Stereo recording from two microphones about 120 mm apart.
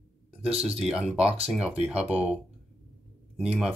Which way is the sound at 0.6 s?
5° right (ahead or behind).